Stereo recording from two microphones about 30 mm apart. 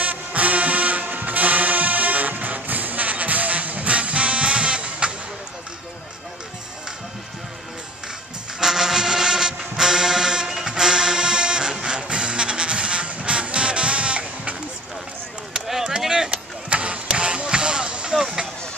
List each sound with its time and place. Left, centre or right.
0.0 s music: right
8.5 s music: centre; by 14.6 s right
16.3 s music: right
18.2 s vehicle: right